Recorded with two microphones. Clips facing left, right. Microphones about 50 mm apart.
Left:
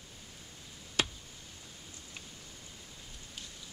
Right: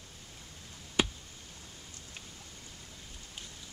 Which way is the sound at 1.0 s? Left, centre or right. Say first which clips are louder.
Right 3 dB; centre.